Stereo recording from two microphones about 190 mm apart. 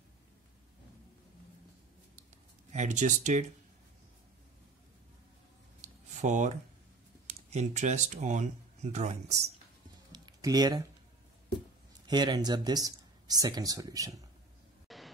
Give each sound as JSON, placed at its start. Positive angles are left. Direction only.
{"t": 2.7, "sound": "speech", "side_deg": -40}
{"t": 5.8, "sound": "a sound", "side_deg": -40}
{"t": 7.4, "sound": "speech", "side_deg": -35}
{"t": 10.1, "sound": "a sound", "side_deg": -20}
{"t": 12.1, "sound": "speech", "side_deg": -20}
{"t": 14.9, "sound": "music", "side_deg": 0}